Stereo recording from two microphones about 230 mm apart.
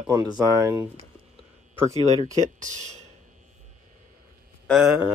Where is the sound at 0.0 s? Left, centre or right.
Centre.